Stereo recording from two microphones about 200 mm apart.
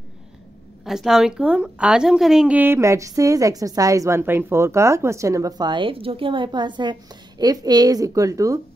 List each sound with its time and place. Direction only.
0.8 s a woman's voice: centre (ahead or behind)